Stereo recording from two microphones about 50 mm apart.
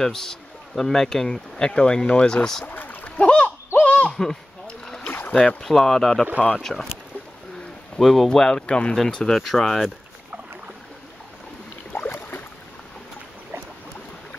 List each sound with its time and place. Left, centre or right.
0.0 s speech: centre
2.6 s splash: left
3.8 s owl: left
4.1 s a sound: centre
5.3 s speech: centre
8.0 s speech: centre
8.9 s speech: centre
12.1 s boat: left